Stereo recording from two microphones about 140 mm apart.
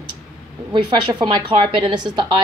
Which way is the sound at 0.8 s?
30° right (ahead or behind).